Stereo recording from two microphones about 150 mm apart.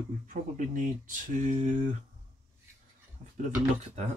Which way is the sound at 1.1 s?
60° right (ahead or behind).